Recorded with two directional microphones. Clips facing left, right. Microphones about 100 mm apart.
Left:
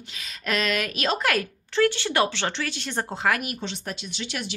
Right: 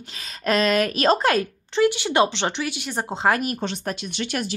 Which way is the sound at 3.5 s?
50° right (ahead or behind).